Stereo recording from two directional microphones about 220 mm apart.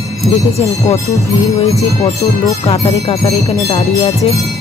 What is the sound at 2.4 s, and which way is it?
Music, 25° left (ahead or behind).